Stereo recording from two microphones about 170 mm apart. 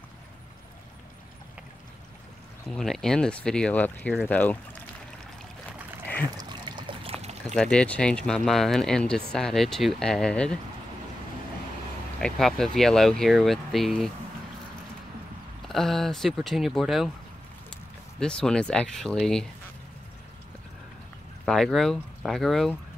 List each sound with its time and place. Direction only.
2.7 s speech: 5° left (ahead or behind)
6.3 s trickle: 25° right (ahead or behind)
7.4 s speech: 5° left (ahead or behind)
12.2 s speech: 5° left (ahead or behind)
15.6 s speech: centre (ahead or behind)
18.2 s speech: 5° left (ahead or behind)
21.5 s speech: 5° left (ahead or behind)